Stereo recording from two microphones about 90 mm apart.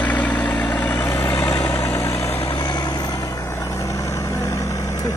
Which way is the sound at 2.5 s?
50° left (ahead or behind).